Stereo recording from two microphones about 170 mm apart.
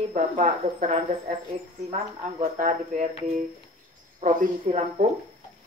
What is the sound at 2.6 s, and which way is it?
Speech, 45° right (ahead or behind).